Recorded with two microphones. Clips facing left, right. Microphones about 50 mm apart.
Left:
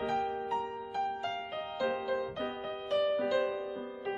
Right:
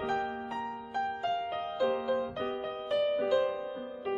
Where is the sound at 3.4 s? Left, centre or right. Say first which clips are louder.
Right 2 dB; centre.